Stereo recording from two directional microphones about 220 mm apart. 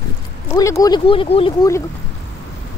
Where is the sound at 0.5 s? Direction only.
15° left (ahead or behind).